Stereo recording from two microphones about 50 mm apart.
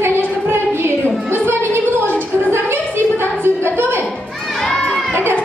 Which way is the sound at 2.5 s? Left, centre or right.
Right.